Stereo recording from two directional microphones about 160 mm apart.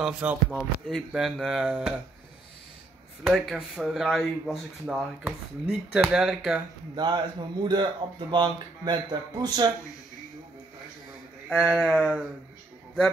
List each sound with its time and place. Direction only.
0.0 s speech: 5° right (ahead or behind)
3.3 s speech: centre (ahead or behind)
7.0 s speech: 25° right (ahead or behind)
11.4 s speech: 5° right (ahead or behind)